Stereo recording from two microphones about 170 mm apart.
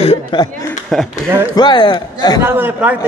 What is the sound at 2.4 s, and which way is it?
Speech, 10° right (ahead or behind).